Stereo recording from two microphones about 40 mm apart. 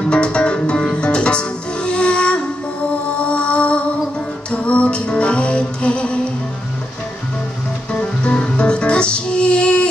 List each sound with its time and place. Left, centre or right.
0.0 s music: left
7.9 s music: left